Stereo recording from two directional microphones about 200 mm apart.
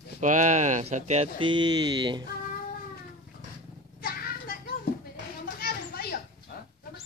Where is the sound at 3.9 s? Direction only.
50° left (ahead or behind).